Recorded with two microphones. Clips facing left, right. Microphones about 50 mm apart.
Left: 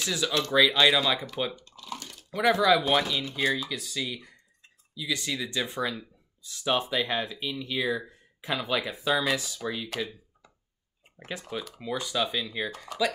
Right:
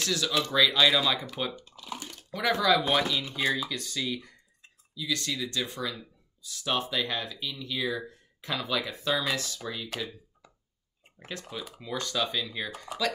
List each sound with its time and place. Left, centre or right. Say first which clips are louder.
0.0 s speech: even; centre
1.6 s typing: left 1 dB; centre
2.3 s speech: left 3 dB; centre
3.4 s speech: left 1 dB; centre
3.7 s speech: right 1 dB; centre
10.4 s a sound: right 1 dB; centre
11.8 s speech: left 1 dB; centre